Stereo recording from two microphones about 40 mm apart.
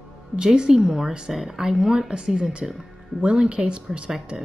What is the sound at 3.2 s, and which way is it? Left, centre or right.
Speech, right.